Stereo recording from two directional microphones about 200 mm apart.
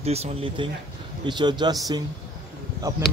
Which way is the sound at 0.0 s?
30° right (ahead or behind).